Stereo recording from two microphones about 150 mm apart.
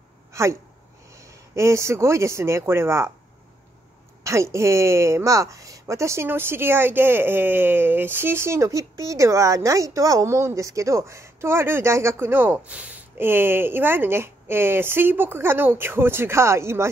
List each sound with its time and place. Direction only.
0.3 s a sound: 20° right (ahead or behind)
1.5 s speech: 20° right (ahead or behind)
4.2 s a woman's voice: 20° right (ahead or behind)